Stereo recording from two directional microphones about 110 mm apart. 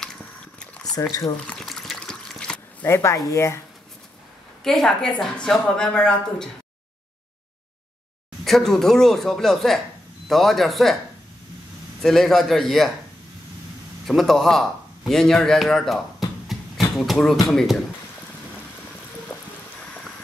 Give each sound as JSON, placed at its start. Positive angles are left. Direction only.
{"t": 0.2, "sound": "biting", "side_deg": 10}
{"t": 1.5, "sound": "water", "side_deg": 5}
{"t": 2.8, "sound": "speech", "side_deg": 25}
{"t": 4.6, "sound": "a man's voice", "side_deg": 5}
{"t": 8.5, "sound": "a man's voice", "side_deg": 5}
{"t": 12.0, "sound": "a man's voice", "side_deg": 0}
{"t": 14.0, "sound": "a man's voice", "side_deg": 0}
{"t": 16.4, "sound": "a sound", "side_deg": 0}